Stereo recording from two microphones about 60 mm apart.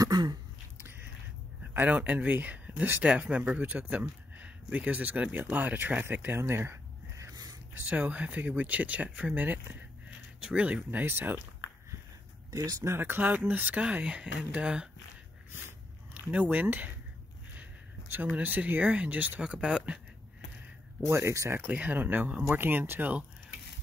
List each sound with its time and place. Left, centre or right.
0.7 s a sound: right
1.7 s speech: right
7.2 s dog: right
7.8 s speech: right
12.4 s speech: right
12.8 s speech: right; by 14.9 s centre
16.1 s speech: right
18.2 s speech: right
21.1 s speech: right
21.7 s speech: right